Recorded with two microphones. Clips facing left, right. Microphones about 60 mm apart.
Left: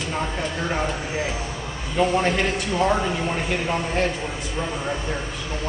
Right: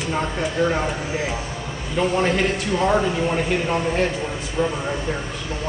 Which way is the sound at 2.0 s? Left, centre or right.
Centre.